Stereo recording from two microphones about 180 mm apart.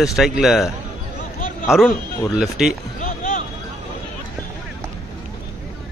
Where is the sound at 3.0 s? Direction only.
45° left (ahead or behind).